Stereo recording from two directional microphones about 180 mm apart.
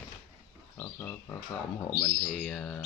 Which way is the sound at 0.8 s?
15° left (ahead or behind).